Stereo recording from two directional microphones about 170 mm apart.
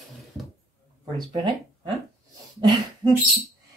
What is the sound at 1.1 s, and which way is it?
Speech, 25° right (ahead or behind).